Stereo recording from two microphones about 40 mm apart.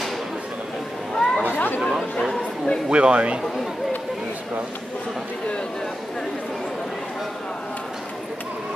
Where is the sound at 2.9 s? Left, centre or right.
Right.